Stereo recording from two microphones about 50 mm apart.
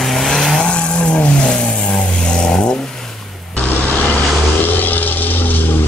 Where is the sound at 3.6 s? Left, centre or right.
Left.